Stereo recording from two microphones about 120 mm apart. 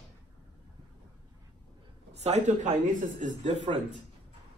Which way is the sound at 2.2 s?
75° right (ahead or behind).